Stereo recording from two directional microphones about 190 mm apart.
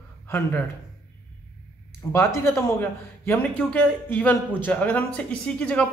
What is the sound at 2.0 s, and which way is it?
Speech, 15° left (ahead or behind).